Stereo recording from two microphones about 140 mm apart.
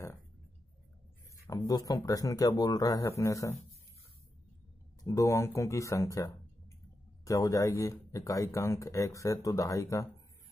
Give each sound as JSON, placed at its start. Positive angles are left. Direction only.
{"t": 1.6, "sound": "speech", "side_deg": 25}
{"t": 5.0, "sound": "speech", "side_deg": 25}
{"t": 7.2, "sound": "speech", "side_deg": 25}